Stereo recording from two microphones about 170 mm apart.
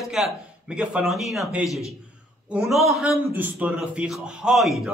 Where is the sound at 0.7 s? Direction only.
5° right (ahead or behind).